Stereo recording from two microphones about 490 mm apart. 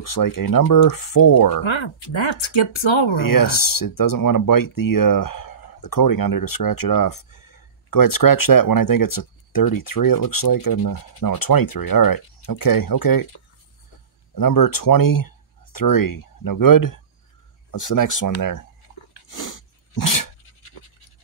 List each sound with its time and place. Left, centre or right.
0.0 s speech: left
1.6 s speech: left
3.3 s speech: left
14.3 s speech: left
19.3 s sneeze: left